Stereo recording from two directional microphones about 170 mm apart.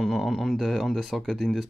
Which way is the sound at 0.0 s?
Centre (ahead or behind).